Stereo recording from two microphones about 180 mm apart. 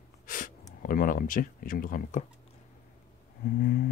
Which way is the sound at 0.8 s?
50° left (ahead or behind).